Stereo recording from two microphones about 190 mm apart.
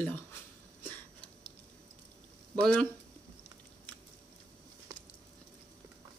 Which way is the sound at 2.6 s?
5° left (ahead or behind).